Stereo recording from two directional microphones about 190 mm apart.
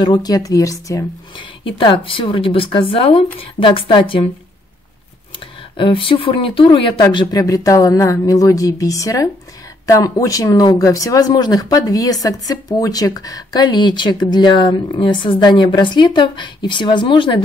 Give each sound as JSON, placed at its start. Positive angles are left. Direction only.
{"t": 0.0, "sound": "speech", "side_deg": 20}
{"t": 5.8, "sound": "speech", "side_deg": 25}